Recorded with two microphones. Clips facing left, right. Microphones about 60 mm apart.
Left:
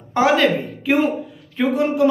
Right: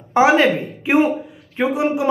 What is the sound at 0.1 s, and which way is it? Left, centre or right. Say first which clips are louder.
Speech: right 2 dB; right.